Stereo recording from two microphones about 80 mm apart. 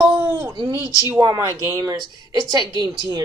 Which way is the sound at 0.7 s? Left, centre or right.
Left.